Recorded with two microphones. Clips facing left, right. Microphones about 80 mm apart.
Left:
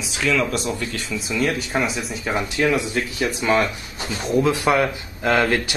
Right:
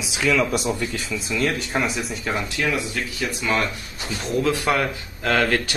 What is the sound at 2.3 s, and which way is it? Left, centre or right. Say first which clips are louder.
Speech: left 4 dB; left.